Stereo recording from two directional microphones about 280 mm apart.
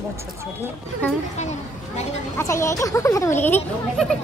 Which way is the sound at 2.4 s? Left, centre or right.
Centre.